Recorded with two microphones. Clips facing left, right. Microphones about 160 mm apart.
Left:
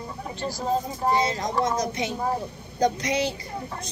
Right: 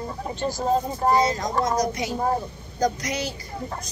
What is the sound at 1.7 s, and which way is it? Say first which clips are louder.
Speech: right 3 dB; 25° left (ahead or behind).